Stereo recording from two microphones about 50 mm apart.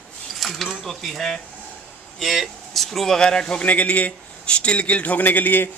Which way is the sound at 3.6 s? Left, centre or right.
Left.